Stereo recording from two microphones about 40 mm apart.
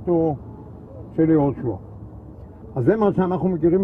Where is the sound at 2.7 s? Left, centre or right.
Centre.